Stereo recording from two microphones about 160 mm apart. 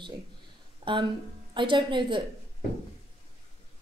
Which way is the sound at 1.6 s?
30° right (ahead or behind).